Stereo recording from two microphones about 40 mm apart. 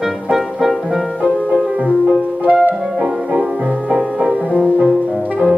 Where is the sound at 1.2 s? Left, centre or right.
Right.